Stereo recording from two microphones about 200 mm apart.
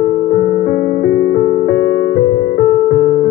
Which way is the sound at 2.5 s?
40° left (ahead or behind).